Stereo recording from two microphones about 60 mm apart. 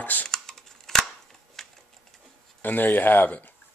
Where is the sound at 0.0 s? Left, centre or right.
Left.